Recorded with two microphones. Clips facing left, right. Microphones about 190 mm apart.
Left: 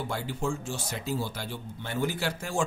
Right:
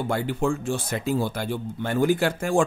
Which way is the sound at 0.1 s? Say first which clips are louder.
Right 9 dB; 60° right (ahead or behind).